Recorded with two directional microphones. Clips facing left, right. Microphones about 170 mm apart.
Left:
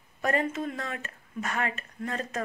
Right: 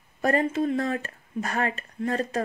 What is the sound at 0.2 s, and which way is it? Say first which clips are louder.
A woman's voice: right 5 dB; 35° right (ahead or behind).